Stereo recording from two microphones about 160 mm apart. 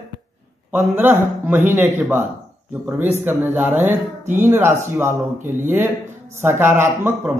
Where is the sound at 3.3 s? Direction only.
10° right (ahead or behind).